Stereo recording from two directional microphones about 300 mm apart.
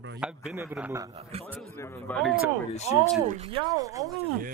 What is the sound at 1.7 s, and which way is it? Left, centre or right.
Speech, centre.